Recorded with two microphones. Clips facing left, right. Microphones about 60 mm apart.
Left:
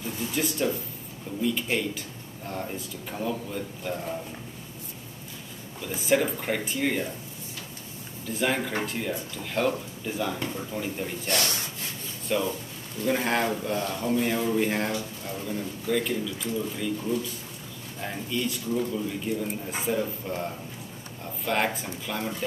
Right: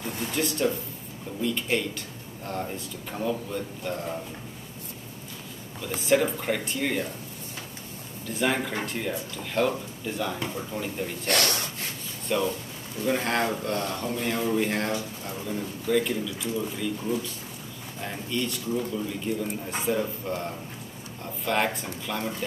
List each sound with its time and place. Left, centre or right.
0.2 s speech: centre
5.9 s speech: centre
8.3 s speech: centre
11.2 s speech: right
12.3 s speech: centre
18.0 s speech: centre
21.5 s speech: centre